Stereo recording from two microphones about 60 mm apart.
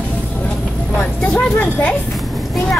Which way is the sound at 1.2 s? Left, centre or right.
Left.